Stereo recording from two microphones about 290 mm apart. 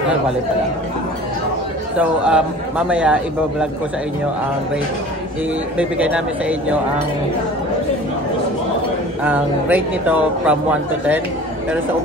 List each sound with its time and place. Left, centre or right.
2.0 s speech: centre
5.8 s speech: centre
9.2 s speech: centre